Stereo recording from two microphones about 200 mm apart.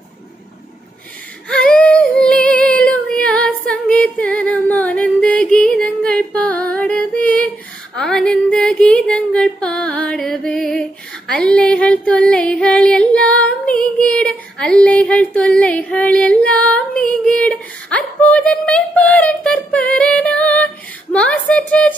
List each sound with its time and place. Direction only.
1.5 s female singing: 5° left (ahead or behind)